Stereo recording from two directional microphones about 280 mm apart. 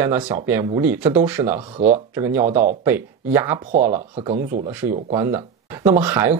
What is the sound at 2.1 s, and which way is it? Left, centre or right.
Speech, centre.